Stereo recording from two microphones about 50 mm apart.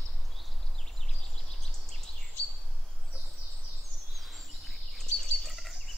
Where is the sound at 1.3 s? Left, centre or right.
Centre.